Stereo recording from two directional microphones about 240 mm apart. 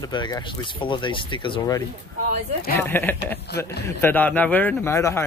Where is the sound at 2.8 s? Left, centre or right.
Centre.